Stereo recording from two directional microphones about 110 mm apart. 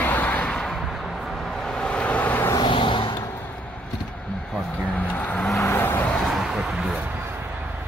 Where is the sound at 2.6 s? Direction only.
50° left (ahead or behind).